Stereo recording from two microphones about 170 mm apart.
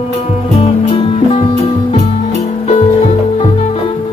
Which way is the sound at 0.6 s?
30° left (ahead or behind).